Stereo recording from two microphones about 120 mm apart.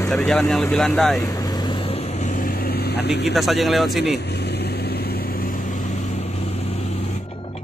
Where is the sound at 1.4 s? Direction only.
35° left (ahead or behind).